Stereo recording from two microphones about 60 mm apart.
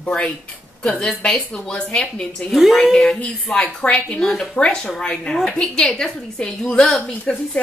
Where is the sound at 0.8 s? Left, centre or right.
Centre.